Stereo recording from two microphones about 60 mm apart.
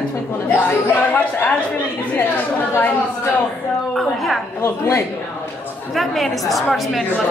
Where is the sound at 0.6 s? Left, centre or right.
Left.